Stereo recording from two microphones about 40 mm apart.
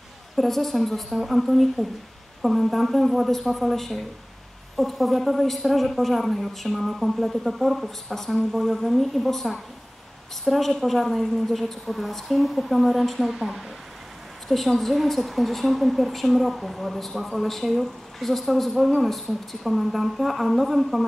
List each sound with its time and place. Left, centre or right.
0.4 s a woman's voice: centre
14.5 s a woman's voice: centre